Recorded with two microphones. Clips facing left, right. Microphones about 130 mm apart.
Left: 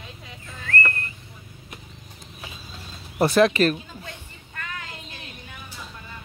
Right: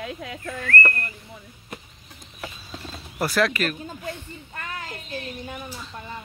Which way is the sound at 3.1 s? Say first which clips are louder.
Left 5 dB; 25° left (ahead or behind).